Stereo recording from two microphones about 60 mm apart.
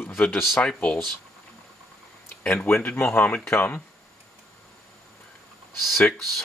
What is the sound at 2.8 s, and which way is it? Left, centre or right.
Speech, left.